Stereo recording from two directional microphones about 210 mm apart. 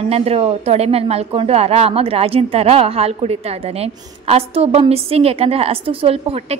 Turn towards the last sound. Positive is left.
turn(degrees=-30)  # may be behind; listen again after turning